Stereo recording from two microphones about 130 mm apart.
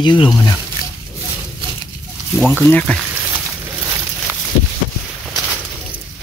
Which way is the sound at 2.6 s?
10° left (ahead or behind).